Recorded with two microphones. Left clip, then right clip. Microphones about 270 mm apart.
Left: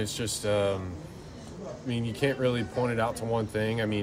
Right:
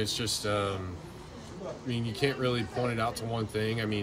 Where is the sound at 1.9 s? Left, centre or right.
Centre.